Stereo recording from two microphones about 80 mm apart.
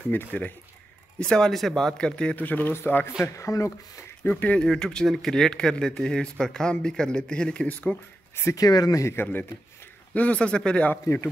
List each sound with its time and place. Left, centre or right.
0.1 s a man's voice: left
1.2 s a man's voice: centre; by 3.1 s left
3.2 s speech: left
4.2 s a man's voice: centre
4.6 s a man's voice: centre
8.5 s speech: left
9.0 s a man's voice: left
10.9 s speech: left